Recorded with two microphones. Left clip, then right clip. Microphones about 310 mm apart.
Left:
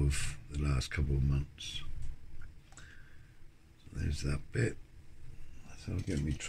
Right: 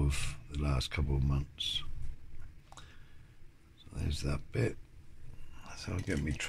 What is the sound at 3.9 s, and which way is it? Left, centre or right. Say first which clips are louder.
Speech: right 1 dB; centre.